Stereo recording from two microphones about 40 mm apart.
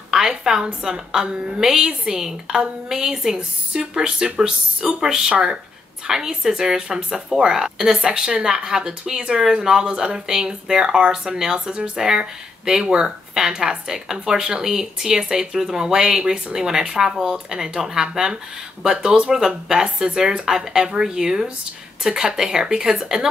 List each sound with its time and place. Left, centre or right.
0.1 s speech: centre